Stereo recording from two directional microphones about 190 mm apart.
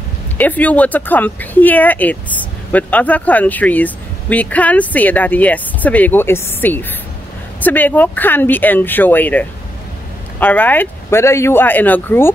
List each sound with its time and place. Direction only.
0.4 s speech: 10° left (ahead or behind)